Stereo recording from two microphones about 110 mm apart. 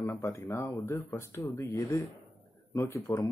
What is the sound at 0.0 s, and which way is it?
Speech, 20° left (ahead or behind).